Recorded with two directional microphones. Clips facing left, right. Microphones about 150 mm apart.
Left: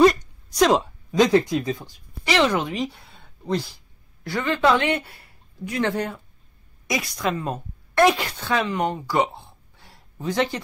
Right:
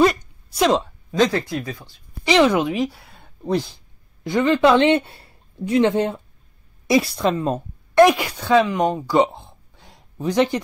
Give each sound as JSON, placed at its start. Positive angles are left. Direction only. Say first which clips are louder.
{"t": 0.0, "sound": "a sound", "louder": "left 1 dB", "side_deg": 0}
{"t": 0.7, "sound": "speech", "louder": "even", "side_deg": 10}
{"t": 2.2, "sound": "speech", "louder": "right 5 dB", "side_deg": -15}
{"t": 4.2, "sound": "speech", "louder": "right 6 dB", "side_deg": -20}